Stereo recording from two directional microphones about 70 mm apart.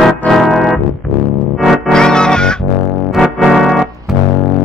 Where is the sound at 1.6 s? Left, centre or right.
Centre.